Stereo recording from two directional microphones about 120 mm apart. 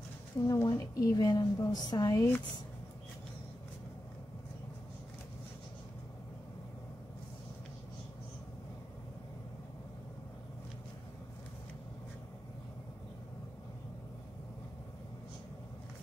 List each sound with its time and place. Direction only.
0.5 s a woman's voice: 25° left (ahead or behind)